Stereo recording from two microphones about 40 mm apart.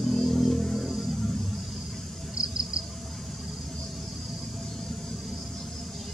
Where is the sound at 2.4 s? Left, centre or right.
Right.